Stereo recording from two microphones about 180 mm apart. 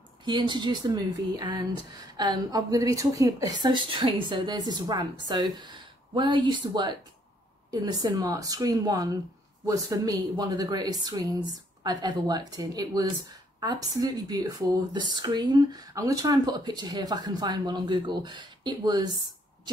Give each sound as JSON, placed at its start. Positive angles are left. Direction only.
{"t": 0.2, "sound": "speech", "side_deg": -25}